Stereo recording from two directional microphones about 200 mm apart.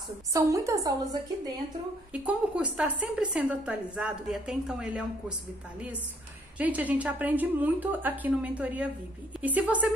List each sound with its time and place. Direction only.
0.3 s a woman's voice: 15° right (ahead or behind)
2.2 s a woman's voice: 5° right (ahead or behind)
6.6 s a woman's voice: 5° right (ahead or behind)